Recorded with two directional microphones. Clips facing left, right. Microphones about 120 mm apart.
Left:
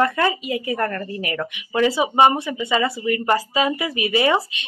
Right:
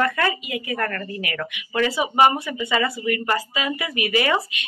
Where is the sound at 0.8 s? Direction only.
20° left (ahead or behind).